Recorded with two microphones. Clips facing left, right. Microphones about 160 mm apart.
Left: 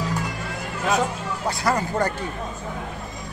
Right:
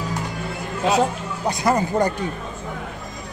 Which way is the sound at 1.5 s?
20° right (ahead or behind).